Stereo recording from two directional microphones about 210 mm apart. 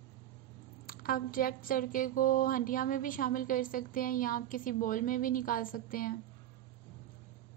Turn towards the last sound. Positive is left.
turn(degrees=40)  # may be behind; listen again after turning